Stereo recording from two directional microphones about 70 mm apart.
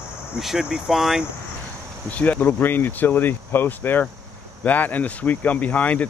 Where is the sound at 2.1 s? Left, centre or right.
Left.